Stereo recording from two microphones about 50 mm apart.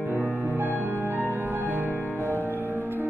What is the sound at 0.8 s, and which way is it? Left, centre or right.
Music, right.